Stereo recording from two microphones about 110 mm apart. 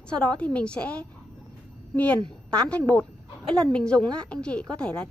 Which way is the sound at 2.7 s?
10° left (ahead or behind).